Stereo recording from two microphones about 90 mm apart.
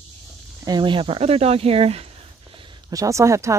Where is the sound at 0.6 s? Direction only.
55° right (ahead or behind); by 2.1 s 90° right.